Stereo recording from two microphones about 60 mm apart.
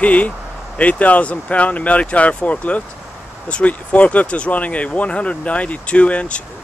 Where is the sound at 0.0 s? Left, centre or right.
Left.